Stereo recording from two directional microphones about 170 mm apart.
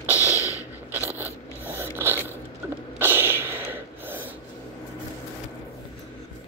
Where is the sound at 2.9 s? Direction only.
15° right (ahead or behind).